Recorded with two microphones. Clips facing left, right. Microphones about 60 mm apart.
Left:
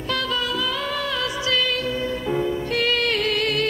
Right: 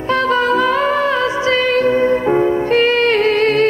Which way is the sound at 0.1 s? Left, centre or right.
Right.